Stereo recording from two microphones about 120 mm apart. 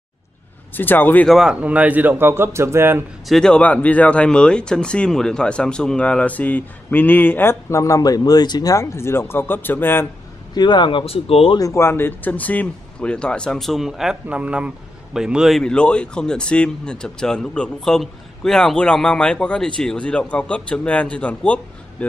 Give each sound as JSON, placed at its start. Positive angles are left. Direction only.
{"t": 0.7, "sound": "speech", "side_deg": 15}
{"t": 1.3, "sound": "speech", "side_deg": -5}
{"t": 3.3, "sound": "speech", "side_deg": 5}
{"t": 10.5, "sound": "speech", "side_deg": 40}
{"t": 11.5, "sound": "speech", "side_deg": 25}